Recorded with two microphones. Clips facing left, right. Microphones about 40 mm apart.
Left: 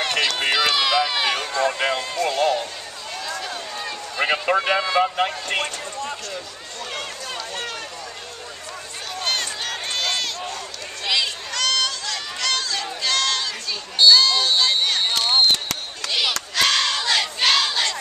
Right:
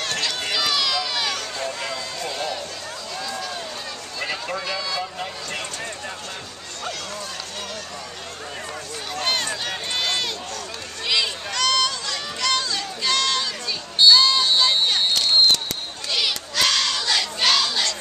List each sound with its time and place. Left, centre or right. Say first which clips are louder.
0.0 s run: left 5 dB; left
1.7 s a sound: left 6 dB; left
2.1 s run: left 9 dB; left
4.2 s speech: left 8 dB; left
9.2 s crowd: right 1 dB; centre
10.0 s run: even; centre
13.0 s a sound: right 1 dB; centre
15.1 s a sound: even; centre
16.1 s crowd: left 1 dB; centre